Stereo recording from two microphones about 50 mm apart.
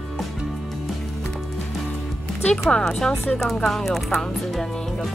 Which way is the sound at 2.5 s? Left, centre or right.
Centre.